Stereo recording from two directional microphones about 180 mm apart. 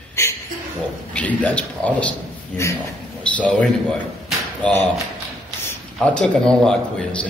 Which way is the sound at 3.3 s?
5° left (ahead or behind).